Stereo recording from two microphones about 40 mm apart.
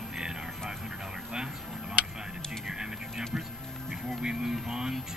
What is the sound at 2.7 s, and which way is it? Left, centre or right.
Speech, centre.